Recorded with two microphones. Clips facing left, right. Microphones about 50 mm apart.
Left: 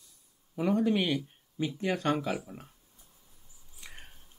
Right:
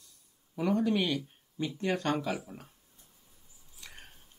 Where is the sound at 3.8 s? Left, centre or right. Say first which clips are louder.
Left 1 dB; left.